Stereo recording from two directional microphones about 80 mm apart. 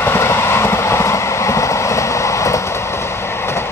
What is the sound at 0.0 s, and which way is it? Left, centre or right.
Train, left.